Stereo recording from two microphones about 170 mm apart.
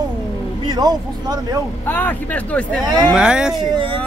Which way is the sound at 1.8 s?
10° left (ahead or behind).